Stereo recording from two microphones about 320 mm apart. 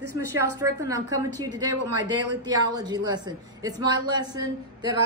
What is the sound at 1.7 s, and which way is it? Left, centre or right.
Speech, right.